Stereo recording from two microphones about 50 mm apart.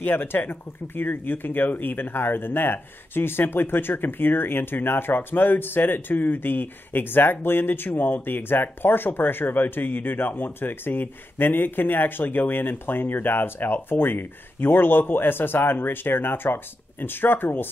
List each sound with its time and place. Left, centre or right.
0.0 s speech: left